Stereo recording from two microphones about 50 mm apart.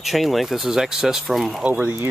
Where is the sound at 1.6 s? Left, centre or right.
Right.